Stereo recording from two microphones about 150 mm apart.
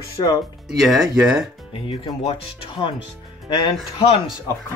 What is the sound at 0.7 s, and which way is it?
Speech, centre (ahead or behind).